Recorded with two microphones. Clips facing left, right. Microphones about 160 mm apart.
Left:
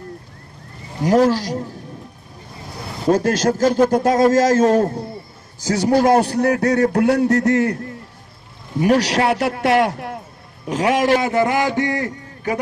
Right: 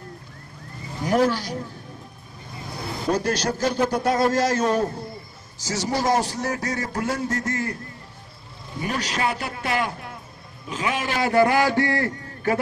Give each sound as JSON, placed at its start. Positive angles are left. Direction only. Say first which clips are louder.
{"t": 1.1, "sound": "a man's voice", "louder": "left 5 dB", "side_deg": 40}
{"t": 3.1, "sound": "a man's voice", "louder": "left 7 dB", "side_deg": 45}
{"t": 11.1, "sound": "a man's voice", "louder": "left 1 dB", "side_deg": 20}